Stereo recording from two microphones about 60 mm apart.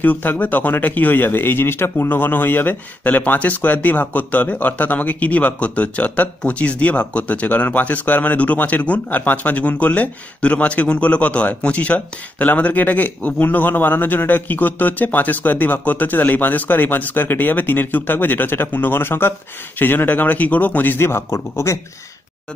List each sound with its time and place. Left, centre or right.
0.0 s speech: left
21.0 s a man's voice: left